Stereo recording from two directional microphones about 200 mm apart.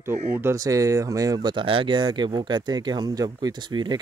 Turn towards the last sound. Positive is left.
turn(degrees=-20)  # may be behind; listen again after turning